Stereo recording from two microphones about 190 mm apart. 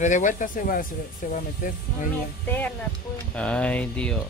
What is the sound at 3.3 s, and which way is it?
Speech, 5° left (ahead or behind).